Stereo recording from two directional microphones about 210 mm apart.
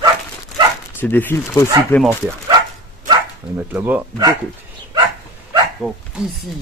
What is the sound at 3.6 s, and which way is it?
Speech, 10° right (ahead or behind).